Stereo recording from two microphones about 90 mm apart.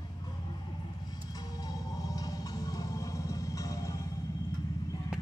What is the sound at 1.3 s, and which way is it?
Music, 45° left (ahead or behind).